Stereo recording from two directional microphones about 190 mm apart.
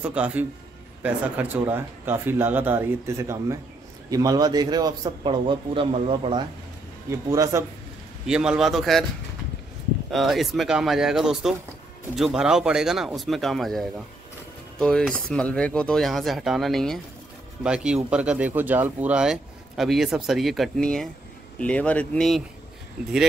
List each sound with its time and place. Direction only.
0.0 s a man's voice: 5° right (ahead or behind); by 6.4 s 30° right (ahead or behind)
7.1 s speech: 15° right (ahead or behind)
8.3 s speech: 5° right (ahead or behind)
10.1 s speech: centre (ahead or behind)